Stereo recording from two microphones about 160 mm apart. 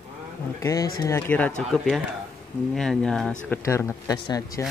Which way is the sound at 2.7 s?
Centre (ahead or behind).